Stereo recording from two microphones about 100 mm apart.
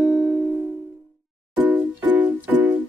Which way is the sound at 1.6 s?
15° right (ahead or behind).